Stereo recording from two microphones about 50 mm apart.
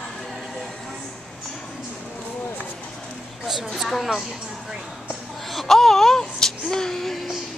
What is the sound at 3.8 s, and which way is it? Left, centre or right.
Speech, centre.